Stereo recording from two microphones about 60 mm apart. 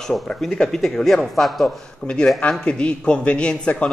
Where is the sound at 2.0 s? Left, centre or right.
Centre.